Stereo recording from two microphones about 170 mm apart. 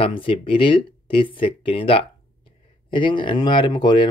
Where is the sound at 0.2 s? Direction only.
30° left (ahead or behind).